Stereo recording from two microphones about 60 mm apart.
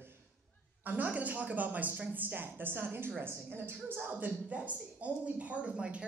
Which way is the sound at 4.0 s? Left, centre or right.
Right.